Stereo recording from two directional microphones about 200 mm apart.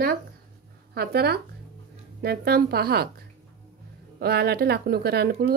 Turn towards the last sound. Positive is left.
turn(degrees=-50)  # may be behind; listen again after turning